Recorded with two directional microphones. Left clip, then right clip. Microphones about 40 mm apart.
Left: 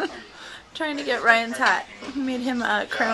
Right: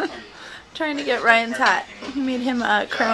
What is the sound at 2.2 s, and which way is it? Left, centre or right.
Speech, centre.